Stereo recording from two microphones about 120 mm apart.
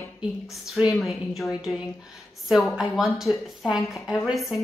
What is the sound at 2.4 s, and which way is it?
Speech, centre (ahead or behind).